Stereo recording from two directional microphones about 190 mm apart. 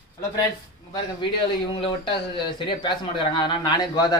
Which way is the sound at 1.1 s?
25° left (ahead or behind).